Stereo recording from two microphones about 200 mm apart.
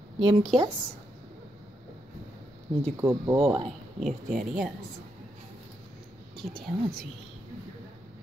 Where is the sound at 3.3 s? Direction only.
30° right (ahead or behind).